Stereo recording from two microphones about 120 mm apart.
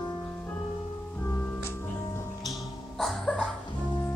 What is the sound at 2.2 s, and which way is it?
Music, 30° left (ahead or behind).